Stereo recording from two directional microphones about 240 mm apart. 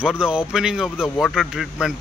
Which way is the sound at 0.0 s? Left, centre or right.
Centre.